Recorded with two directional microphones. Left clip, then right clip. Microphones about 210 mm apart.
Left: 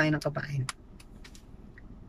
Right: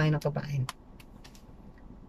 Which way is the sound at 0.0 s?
10° right (ahead or behind).